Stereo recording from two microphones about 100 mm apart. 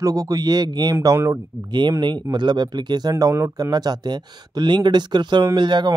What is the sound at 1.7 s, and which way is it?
Speech, 50° right (ahead or behind).